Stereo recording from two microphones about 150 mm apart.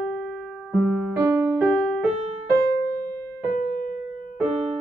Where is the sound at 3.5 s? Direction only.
70° left (ahead or behind).